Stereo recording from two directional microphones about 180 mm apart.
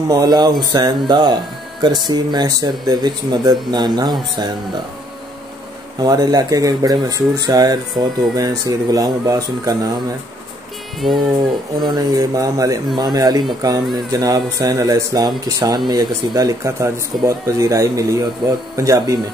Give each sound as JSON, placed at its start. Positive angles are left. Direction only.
{"t": 0.1, "sound": "speech", "side_deg": -20}
{"t": 5.9, "sound": "speech", "side_deg": -20}
{"t": 11.0, "sound": "a sound", "side_deg": 0}
{"t": 11.3, "sound": "a man's voice", "side_deg": -25}